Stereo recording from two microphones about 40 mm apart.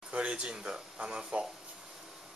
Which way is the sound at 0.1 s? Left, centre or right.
Right.